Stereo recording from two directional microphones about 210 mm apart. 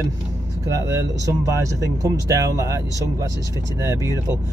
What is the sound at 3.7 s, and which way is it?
Speech, 15° right (ahead or behind).